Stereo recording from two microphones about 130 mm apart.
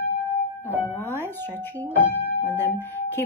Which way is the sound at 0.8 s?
15° left (ahead or behind).